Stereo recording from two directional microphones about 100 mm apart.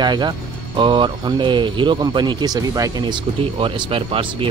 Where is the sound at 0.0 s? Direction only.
50° right (ahead or behind).